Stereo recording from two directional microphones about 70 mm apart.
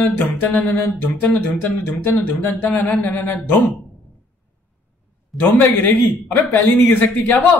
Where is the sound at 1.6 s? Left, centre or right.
Left.